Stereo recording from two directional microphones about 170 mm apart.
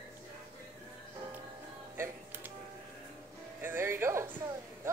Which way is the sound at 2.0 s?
10° right (ahead or behind).